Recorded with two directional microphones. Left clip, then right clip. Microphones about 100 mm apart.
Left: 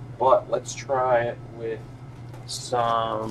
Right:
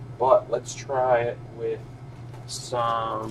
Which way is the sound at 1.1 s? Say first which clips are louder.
Even; 40° left (ahead or behind).